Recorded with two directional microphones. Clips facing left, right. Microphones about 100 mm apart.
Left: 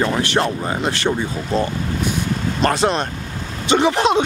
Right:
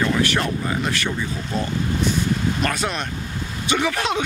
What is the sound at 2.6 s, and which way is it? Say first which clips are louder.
Speech: left 6 dB; 30° left (ahead or behind).